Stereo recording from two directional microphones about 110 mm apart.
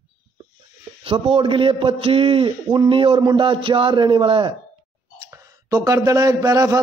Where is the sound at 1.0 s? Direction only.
55° right (ahead or behind).